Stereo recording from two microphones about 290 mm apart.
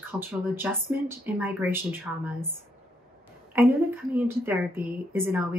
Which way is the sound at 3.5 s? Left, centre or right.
Centre.